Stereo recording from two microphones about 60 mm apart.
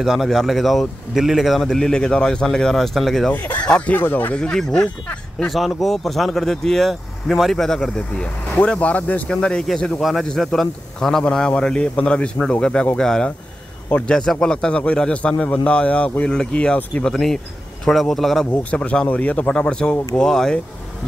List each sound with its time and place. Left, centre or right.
0.0 s a man's voice: centre
3.6 s speech: centre
3.9 s speech: left
4.4 s speech: centre
5.5 s a man's voice: centre
13.8 s a man's voice: left
14.1 s a man's voice: centre
17.1 s a man's voice: centre
18.5 s a man's voice: left